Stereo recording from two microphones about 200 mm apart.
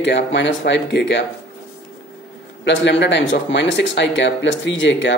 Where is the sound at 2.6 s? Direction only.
65° left (ahead or behind).